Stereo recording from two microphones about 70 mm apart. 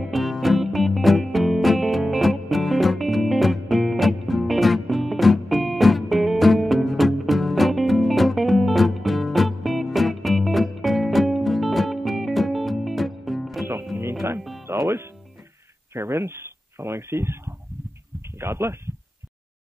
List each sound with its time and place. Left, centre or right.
0.0 s music: centre
14.7 s music: right
15.9 s a sound: right